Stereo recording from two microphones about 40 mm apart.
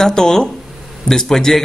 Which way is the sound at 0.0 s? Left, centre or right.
Centre.